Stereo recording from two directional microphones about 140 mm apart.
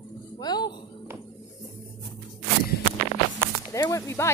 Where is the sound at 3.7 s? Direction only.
20° left (ahead or behind).